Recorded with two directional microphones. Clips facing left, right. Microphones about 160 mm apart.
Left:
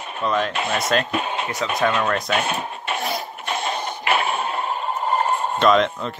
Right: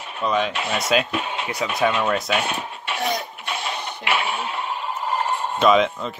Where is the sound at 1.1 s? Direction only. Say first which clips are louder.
Left 2 dB; 40° left (ahead or behind).